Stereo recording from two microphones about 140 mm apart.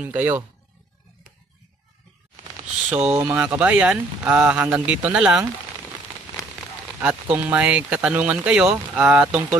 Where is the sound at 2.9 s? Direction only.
5° right (ahead or behind).